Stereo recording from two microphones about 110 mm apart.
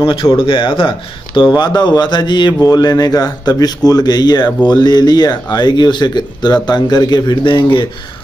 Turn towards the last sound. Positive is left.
turn(degrees=50)  # may be behind; listen again after turning